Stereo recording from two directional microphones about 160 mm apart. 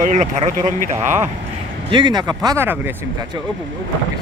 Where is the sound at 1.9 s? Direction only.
25° right (ahead or behind).